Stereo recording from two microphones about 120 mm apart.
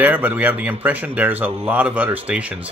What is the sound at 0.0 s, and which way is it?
Speech, 15° right (ahead or behind).